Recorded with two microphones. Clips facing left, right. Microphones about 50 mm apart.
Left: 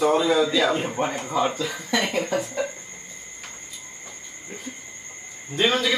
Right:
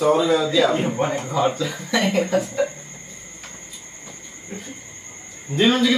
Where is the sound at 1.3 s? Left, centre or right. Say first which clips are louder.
Right 3 dB; right.